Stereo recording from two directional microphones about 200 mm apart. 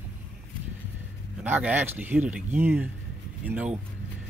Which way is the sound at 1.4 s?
10° right (ahead or behind).